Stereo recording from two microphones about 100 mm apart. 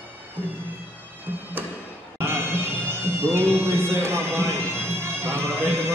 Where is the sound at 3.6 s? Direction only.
25° right (ahead or behind).